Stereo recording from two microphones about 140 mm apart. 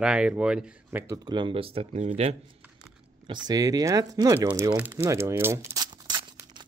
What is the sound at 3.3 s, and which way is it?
Speech, 25° right (ahead or behind).